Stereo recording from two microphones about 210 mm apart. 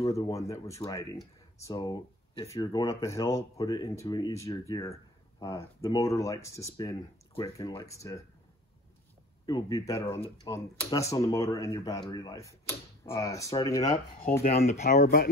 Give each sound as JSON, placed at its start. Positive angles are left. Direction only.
{"t": 0.1, "sound": "speech", "side_deg": 15}
{"t": 9.5, "sound": "speech", "side_deg": 15}
{"t": 14.4, "sound": "speech", "side_deg": 45}